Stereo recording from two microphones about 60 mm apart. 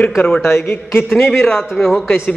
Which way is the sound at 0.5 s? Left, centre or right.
Left.